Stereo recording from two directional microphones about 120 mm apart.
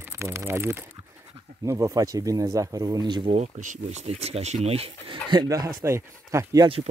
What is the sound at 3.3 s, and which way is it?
Speech, 75° right (ahead or behind).